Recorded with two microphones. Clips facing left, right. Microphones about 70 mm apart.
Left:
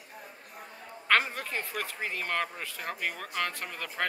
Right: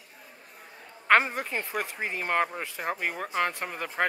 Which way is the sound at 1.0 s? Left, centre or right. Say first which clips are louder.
Right 4 dB; right.